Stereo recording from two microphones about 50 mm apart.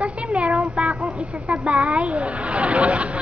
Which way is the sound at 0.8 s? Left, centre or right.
Right.